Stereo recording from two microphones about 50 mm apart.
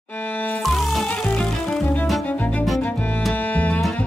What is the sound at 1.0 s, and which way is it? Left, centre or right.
Music, left.